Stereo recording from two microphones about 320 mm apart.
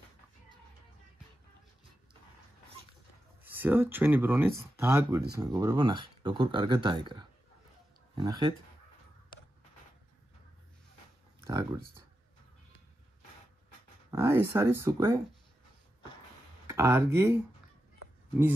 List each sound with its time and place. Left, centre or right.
3.4 s speech: centre
11.4 s a sound: centre
14.1 s speech: centre
16.6 s speech: centre